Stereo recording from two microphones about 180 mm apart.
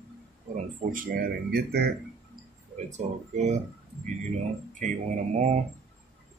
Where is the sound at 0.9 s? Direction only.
50° right (ahead or behind).